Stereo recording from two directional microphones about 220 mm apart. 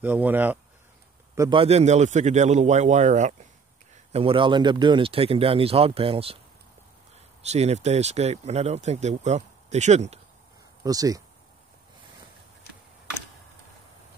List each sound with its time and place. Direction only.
0.0 s a man's voice: 10° right (ahead or behind)
1.6 s a man's voice: 30° right (ahead or behind)
7.4 s speech: 30° right (ahead or behind)
10.8 s speech: 15° right (ahead or behind)